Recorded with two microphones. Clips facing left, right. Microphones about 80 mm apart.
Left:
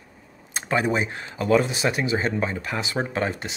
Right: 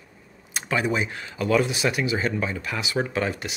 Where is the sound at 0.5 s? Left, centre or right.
Left.